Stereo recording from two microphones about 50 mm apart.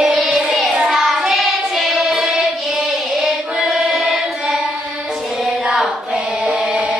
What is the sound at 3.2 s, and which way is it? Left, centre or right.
Singing, centre.